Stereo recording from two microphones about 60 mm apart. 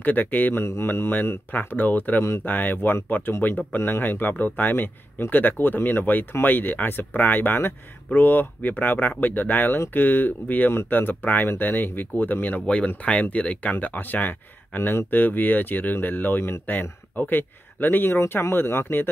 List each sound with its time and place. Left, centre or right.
0.0 s speech: left
0.7 s speech: left
12.6 s speech: centre; by 19.0 s left